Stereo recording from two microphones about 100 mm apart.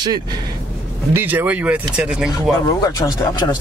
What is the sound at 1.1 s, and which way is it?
Speech, 20° right (ahead or behind).